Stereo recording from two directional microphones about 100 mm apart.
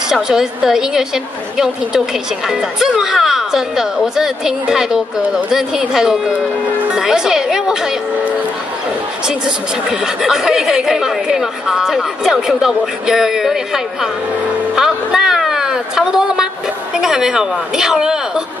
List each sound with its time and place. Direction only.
0.1 s a woman's voice: 5° right (ahead or behind)
9.8 s a woman's voice: 5° right (ahead or behind)
14.8 s a sound: 5° right (ahead or behind)
16.9 s a woman's voice: 5° right (ahead or behind)